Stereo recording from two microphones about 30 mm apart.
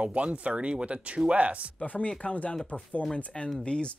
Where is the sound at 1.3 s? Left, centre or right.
Right.